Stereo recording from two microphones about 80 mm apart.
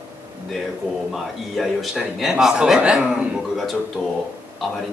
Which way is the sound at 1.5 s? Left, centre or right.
Centre.